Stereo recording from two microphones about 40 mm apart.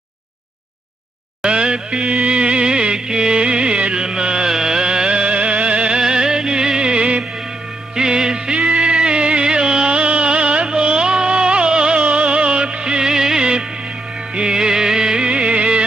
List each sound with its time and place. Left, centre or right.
1.4 s music: right
5.9 s music: centre